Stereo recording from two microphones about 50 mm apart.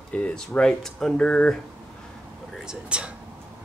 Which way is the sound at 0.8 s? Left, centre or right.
Centre.